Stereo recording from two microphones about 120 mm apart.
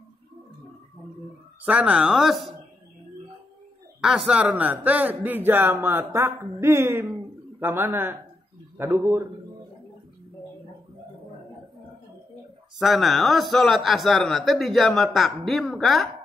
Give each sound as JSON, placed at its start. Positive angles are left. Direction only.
{"t": 1.7, "sound": "a man's voice", "side_deg": -10}
{"t": 4.0, "sound": "a man's voice", "side_deg": -5}
{"t": 12.7, "sound": "a man's voice", "side_deg": 0}